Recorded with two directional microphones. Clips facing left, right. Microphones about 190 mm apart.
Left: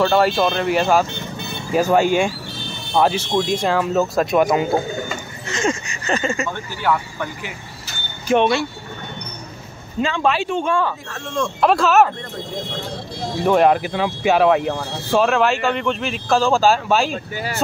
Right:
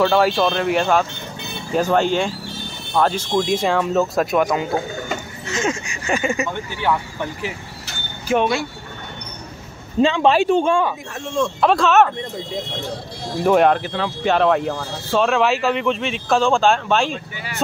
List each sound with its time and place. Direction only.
0.0 s speech: centre (ahead or behind); by 7.2 s 20° right (ahead or behind)
8.3 s speech: 5° right (ahead or behind)
10.0 s speech: 35° right (ahead or behind)
11.3 s speech: centre (ahead or behind)
13.4 s speech: centre (ahead or behind)
13.7 s speech: 15° left (ahead or behind)
14.7 s speech: 15° left (ahead or behind)
15.2 s speech: centre (ahead or behind)
17.1 s speech: 40° left (ahead or behind)